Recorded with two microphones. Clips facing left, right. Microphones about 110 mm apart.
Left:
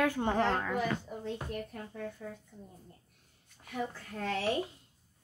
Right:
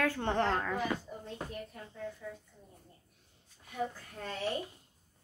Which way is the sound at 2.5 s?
55° left (ahead or behind).